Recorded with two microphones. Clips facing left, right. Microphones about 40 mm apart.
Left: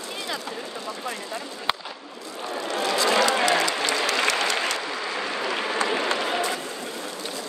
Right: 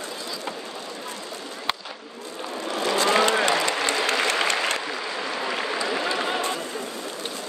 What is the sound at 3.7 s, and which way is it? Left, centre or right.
Applause, right.